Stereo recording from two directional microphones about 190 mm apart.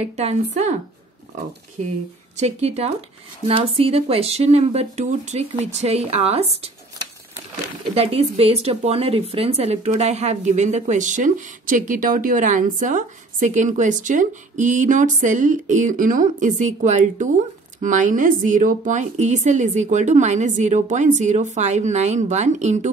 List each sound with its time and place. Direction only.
0.0 s speech: 35° right (ahead or behind)
2.3 s speech: 35° right (ahead or behind)
7.9 s speech: 30° right (ahead or behind)